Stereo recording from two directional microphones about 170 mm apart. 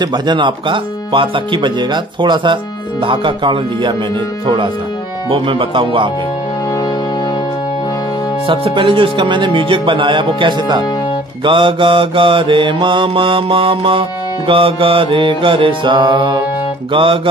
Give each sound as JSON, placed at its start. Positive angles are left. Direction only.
{"t": 0.0, "sound": "speech", "side_deg": -25}
{"t": 5.3, "sound": "speech", "side_deg": -30}
{"t": 8.5, "sound": "mantra", "side_deg": -30}